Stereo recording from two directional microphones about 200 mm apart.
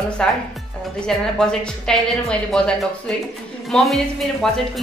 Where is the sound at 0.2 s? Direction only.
5° left (ahead or behind).